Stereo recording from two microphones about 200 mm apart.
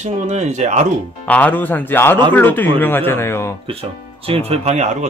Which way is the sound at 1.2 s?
10° left (ahead or behind).